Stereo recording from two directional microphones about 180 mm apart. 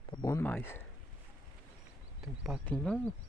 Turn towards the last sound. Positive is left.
turn(degrees=5)  # may be behind; listen again after turning